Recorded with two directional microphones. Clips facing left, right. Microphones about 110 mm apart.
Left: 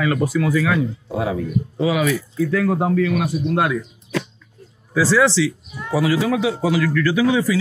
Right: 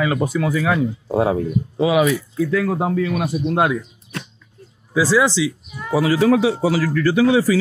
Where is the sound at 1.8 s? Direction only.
20° right (ahead or behind).